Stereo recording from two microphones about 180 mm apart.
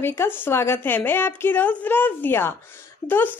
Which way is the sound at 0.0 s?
15° left (ahead or behind).